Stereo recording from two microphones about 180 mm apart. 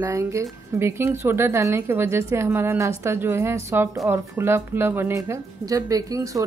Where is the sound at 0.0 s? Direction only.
15° right (ahead or behind).